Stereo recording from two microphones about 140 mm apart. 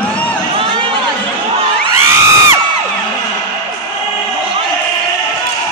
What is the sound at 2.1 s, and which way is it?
Crowd, 20° right (ahead or behind).